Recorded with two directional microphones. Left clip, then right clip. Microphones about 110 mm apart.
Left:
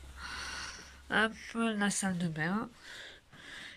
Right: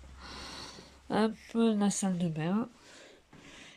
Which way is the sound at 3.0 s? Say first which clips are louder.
Left 5 dB; 20° right (ahead or behind).